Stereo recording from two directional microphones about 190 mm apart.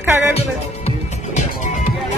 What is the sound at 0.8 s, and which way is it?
Music, 40° left (ahead or behind).